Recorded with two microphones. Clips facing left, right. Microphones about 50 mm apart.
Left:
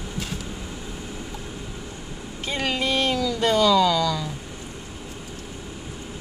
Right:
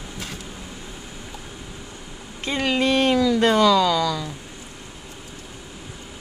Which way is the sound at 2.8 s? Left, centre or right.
Right.